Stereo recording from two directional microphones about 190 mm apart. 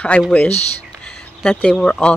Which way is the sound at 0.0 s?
5° left (ahead or behind).